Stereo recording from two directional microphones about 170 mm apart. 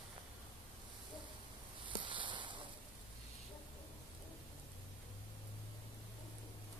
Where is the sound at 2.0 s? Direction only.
30° right (ahead or behind).